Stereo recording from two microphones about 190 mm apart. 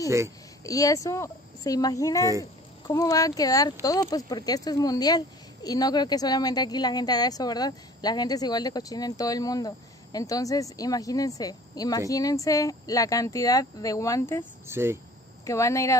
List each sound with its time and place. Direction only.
0.7 s speech: 20° left (ahead or behind)
14.7 s cricket: 15° right (ahead or behind)
15.4 s speech: 15° left (ahead or behind)